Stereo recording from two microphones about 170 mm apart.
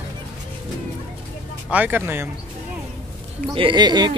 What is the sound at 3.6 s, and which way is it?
Speech, 25° right (ahead or behind).